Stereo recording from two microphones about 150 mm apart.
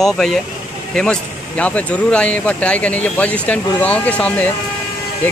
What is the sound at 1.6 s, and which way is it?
Speech, 10° left (ahead or behind).